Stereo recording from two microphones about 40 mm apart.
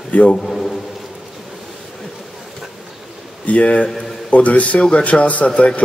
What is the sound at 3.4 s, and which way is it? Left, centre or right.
Speech, left.